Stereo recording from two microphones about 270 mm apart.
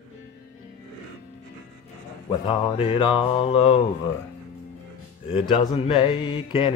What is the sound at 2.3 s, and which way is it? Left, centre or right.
Mantra, centre.